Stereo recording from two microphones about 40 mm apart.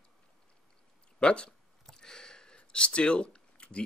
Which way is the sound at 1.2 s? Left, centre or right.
Left.